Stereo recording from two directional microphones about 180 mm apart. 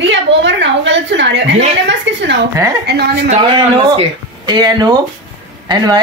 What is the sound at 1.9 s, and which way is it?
Speech, 80° right.